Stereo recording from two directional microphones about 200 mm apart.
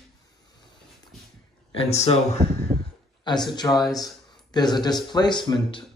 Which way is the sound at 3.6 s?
20° left (ahead or behind).